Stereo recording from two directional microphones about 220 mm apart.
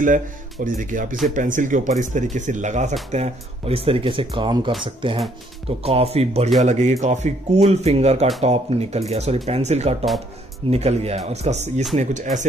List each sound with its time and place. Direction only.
0.7 s speech: 35° right (ahead or behind)